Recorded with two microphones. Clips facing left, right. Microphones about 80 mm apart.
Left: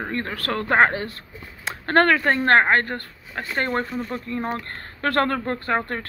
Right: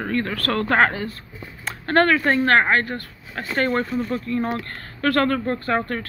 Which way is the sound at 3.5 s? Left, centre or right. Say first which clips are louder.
Right 3 dB; left.